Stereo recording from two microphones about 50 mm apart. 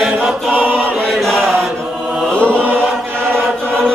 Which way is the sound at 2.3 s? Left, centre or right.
Centre.